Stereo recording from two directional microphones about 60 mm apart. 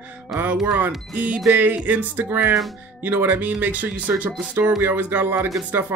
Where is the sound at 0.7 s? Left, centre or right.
Right.